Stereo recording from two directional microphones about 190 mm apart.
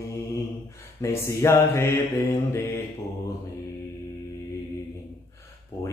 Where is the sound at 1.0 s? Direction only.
15° left (ahead or behind).